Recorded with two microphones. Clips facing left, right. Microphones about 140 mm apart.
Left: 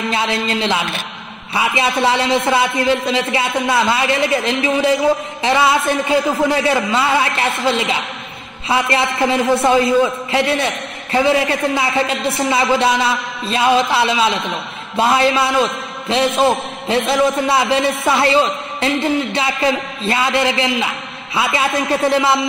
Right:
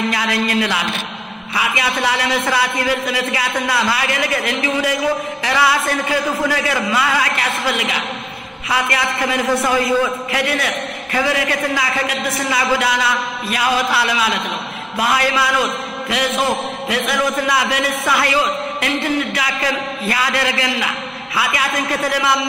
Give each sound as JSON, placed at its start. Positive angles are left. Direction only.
{"t": 0.1, "sound": "a man's voice", "side_deg": 25}